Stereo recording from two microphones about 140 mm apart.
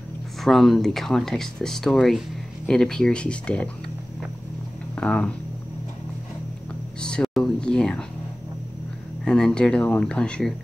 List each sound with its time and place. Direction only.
0.4 s speech: centre (ahead or behind)
4.9 s speech: 10° left (ahead or behind)
7.0 s speech: 5° left (ahead or behind)
9.2 s speech: 5° left (ahead or behind)